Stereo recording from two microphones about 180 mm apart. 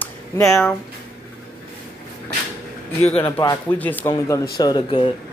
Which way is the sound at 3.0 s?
35° left (ahead or behind).